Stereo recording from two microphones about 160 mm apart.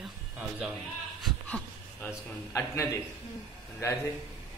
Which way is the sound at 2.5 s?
20° left (ahead or behind).